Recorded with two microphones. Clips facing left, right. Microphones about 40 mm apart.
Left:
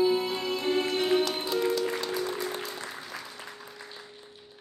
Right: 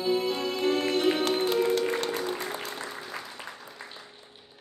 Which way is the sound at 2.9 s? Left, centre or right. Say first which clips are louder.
Right 2 dB; centre.